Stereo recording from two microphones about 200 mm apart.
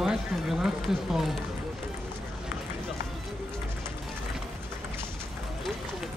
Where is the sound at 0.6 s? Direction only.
Centre (ahead or behind).